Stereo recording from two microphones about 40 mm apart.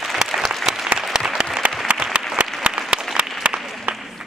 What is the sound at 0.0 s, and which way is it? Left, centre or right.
Applause, centre.